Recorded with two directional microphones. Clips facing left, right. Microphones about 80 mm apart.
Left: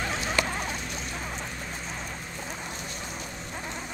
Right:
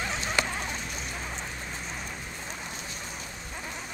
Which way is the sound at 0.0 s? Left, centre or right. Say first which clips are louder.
Left 2 dB; centre.